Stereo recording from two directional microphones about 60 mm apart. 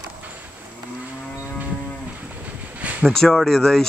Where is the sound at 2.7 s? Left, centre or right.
Right.